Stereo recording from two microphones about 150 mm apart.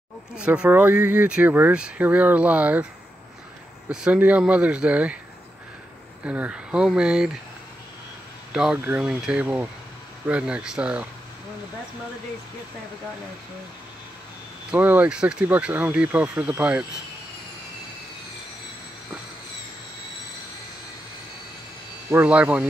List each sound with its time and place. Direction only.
0.4 s speech: 10° right (ahead or behind)
3.9 s speech: 5° right (ahead or behind)
6.2 s speech: 10° right (ahead or behind)
8.7 s speech: 15° right (ahead or behind)
14.7 s speech: 10° right (ahead or behind)
22.1 s speech: 10° right (ahead or behind)